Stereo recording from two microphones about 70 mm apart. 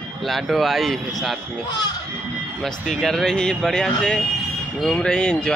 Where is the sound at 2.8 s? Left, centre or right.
Centre.